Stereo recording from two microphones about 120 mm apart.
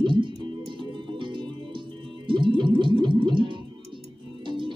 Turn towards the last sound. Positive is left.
turn(degrees=-40)  # may be behind; listen again after turning